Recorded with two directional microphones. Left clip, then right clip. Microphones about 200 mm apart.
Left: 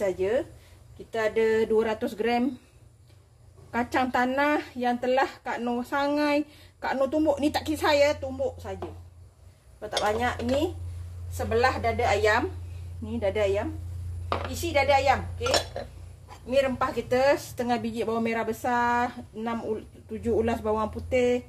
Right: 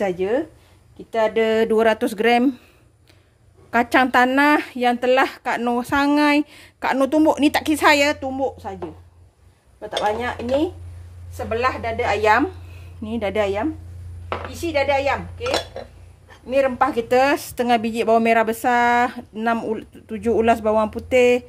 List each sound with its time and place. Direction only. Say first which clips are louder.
1.1 s a woman's voice: right 6 dB; 60° right (ahead or behind)
3.7 s a woman's voice: right 10 dB; 55° right (ahead or behind)
9.8 s speech: right 5 dB; 45° right (ahead or behind)
11.3 s a woman's voice: right 3 dB; 45° right (ahead or behind); by 13.7 s 60° right (ahead or behind)
14.7 s a woman's voice: right 2 dB; 45° right (ahead or behind)
16.4 s a woman's voice: right 7 dB; 50° right (ahead or behind)